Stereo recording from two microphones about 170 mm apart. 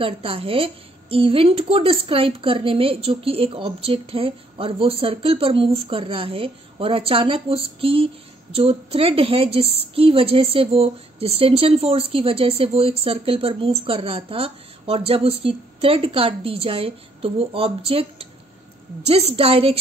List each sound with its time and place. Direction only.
0.0 s a woman's voice: 35° right (ahead or behind)
19.0 s a woman's voice: 35° right (ahead or behind)